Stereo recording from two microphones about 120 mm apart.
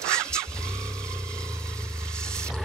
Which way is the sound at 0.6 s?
5° left (ahead or behind).